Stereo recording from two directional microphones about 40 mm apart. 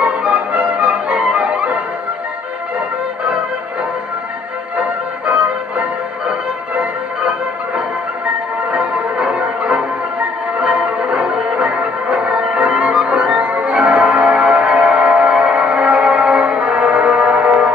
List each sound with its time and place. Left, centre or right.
0.5 s music: right
4.7 s music: right
8.9 s change ringing: right
10.6 s music: right